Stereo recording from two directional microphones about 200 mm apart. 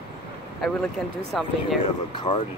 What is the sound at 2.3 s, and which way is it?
Speech, 20° left (ahead or behind).